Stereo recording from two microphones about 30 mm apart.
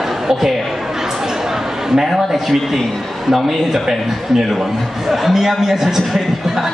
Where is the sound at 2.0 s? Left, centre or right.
Centre.